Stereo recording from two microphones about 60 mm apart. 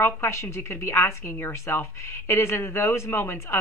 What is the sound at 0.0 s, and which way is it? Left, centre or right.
A woman's voice, left.